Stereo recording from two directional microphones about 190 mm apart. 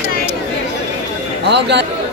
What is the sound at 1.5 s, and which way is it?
Speech, 65° right (ahead or behind).